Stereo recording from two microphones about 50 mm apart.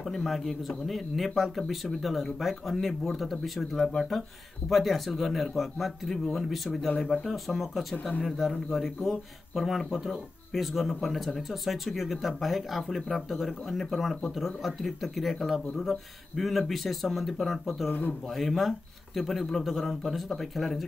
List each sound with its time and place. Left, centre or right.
0.1 s speech: centre
17.8 s speech: left
18.3 s speech: centre